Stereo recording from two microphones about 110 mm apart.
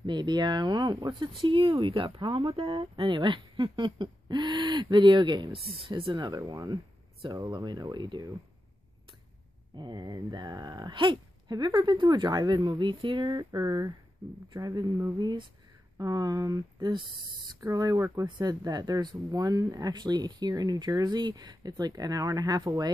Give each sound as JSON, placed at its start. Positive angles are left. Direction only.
{"t": 0.0, "sound": "speech", "side_deg": -40}
{"t": 9.8, "sound": "speech", "side_deg": -40}
{"t": 13.6, "sound": "speech", "side_deg": -35}